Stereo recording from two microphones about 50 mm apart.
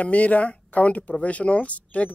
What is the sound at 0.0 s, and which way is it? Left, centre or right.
Speech, left.